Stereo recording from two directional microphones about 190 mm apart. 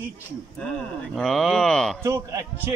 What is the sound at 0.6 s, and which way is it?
Speech, 5° left (ahead or behind).